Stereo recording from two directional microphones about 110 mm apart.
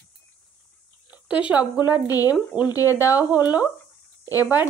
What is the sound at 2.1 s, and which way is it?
Speech, 35° left (ahead or behind).